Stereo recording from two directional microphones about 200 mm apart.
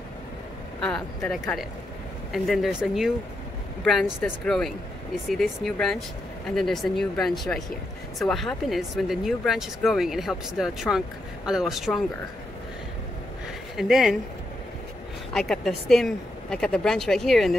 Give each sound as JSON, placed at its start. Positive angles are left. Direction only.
{"t": 0.7, "sound": "speech", "side_deg": 5}
{"t": 13.7, "sound": "speech", "side_deg": 0}
{"t": 15.3, "sound": "speech", "side_deg": 0}